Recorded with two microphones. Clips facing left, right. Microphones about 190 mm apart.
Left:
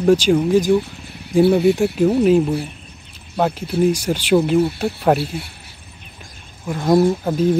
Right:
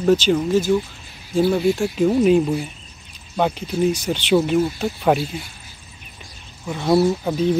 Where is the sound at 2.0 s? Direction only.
5° left (ahead or behind).